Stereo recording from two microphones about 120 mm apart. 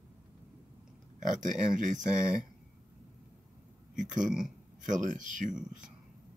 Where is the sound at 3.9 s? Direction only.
90° right.